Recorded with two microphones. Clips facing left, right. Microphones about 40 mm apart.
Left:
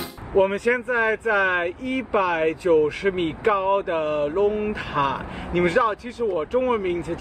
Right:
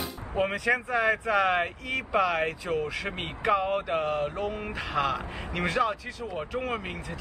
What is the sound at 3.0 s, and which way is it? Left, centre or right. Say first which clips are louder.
Speech: left 7 dB; centre.